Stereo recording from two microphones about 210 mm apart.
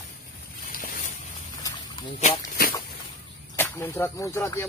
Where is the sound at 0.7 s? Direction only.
40° left (ahead or behind).